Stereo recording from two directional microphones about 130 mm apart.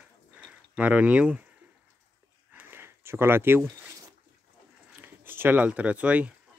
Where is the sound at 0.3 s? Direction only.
10° right (ahead or behind).